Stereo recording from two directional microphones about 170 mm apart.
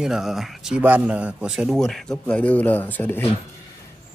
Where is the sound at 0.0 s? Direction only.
Centre (ahead or behind).